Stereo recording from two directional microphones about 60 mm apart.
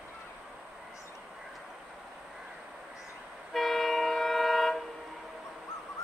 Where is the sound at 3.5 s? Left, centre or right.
Centre.